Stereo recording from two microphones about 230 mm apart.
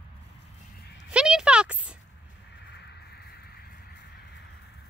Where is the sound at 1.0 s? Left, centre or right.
Centre.